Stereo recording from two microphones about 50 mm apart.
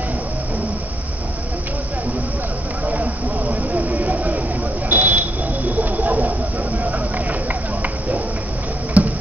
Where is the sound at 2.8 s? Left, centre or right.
Right.